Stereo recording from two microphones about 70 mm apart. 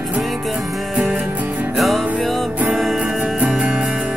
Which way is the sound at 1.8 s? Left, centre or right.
Centre.